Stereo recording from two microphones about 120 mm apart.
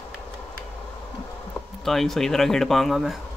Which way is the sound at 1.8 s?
Centre (ahead or behind).